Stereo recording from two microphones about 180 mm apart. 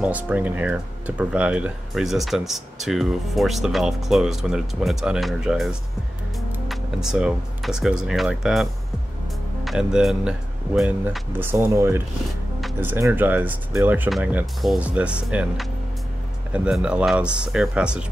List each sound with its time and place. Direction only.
0.0 s speech: 10° right (ahead or behind)
9.7 s speech: 5° right (ahead or behind)